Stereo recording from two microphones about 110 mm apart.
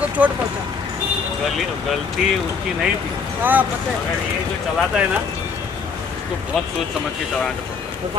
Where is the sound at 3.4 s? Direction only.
15° right (ahead or behind).